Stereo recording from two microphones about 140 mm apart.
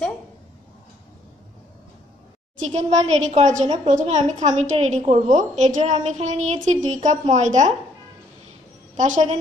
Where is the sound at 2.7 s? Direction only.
55° right (ahead or behind).